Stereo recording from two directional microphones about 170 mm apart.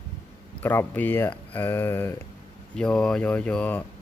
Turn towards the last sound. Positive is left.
turn(degrees=10)  # may be behind; listen again after turning